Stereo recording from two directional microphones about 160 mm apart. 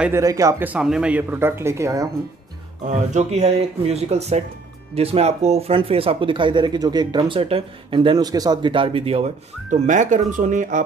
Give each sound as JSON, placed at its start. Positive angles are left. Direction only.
{"t": 0.0, "sound": "speech", "side_deg": -20}
{"t": 2.9, "sound": "speech", "side_deg": -45}